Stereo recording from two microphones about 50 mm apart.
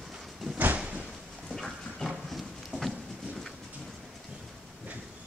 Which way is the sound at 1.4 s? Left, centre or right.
Centre.